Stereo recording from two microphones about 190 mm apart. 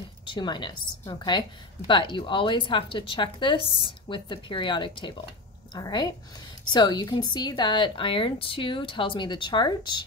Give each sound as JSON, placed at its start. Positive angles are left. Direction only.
{"t": 0.2, "sound": "a woman's voice", "side_deg": 25}